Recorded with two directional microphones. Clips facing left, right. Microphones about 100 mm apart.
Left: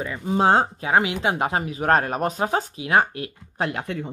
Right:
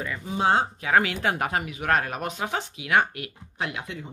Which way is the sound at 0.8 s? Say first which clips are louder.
Left 2 dB; 20° left (ahead or behind).